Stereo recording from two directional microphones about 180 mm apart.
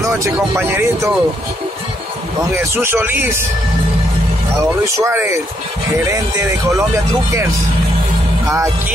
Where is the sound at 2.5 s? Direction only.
15° right (ahead or behind).